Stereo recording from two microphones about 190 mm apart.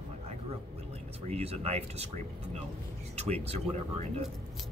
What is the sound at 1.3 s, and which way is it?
Speech, 35° right (ahead or behind).